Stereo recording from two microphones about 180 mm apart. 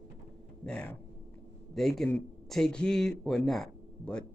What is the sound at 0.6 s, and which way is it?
Speech, 5° left (ahead or behind).